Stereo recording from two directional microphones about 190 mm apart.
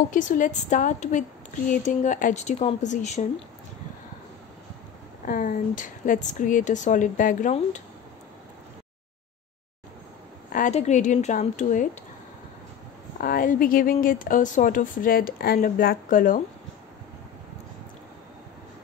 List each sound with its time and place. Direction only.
0.1 s speech: 40° left (ahead or behind)
5.2 s speech: 45° left (ahead or behind)
10.5 s speech: 40° left (ahead or behind)
13.2 s speech: 45° left (ahead or behind)